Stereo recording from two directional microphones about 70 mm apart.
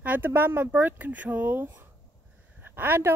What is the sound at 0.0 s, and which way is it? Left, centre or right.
Speech, right.